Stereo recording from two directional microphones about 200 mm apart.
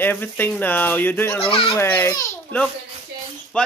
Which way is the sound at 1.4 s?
25° left (ahead or behind).